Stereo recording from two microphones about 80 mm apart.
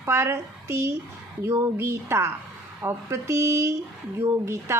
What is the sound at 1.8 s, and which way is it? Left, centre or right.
A woman's voice, right.